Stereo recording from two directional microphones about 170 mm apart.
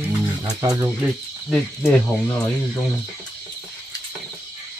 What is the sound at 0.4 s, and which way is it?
Speech, 20° right (ahead or behind).